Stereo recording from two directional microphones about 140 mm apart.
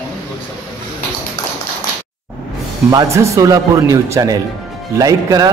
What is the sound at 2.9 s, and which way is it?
A man's voice, 25° right (ahead or behind).